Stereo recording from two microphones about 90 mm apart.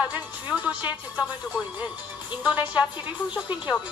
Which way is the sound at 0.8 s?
15° right (ahead or behind).